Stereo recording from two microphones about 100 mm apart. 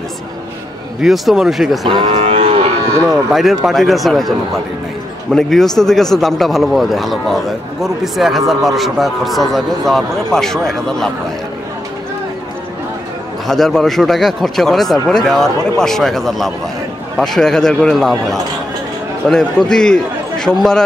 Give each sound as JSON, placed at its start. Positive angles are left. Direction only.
{"t": 1.0, "sound": "a man's voice", "side_deg": -5}
{"t": 1.9, "sound": "speech", "side_deg": -55}
{"t": 2.1, "sound": "livestock", "side_deg": -85}
{"t": 3.1, "sound": "a man's voice", "side_deg": -5}
{"t": 13.5, "sound": "a man's voice", "side_deg": 5}